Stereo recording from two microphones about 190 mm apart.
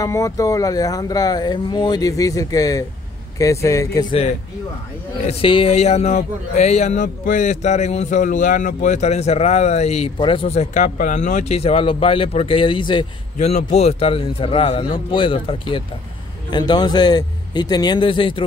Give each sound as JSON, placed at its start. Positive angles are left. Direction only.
{"t": 0.0, "sound": "speech", "side_deg": 15}
{"t": 5.2, "sound": "a man's voice", "side_deg": 30}